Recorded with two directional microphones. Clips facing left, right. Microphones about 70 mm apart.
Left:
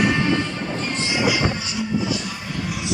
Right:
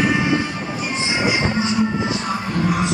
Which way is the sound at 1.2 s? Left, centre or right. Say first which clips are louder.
Right 4 dB; right.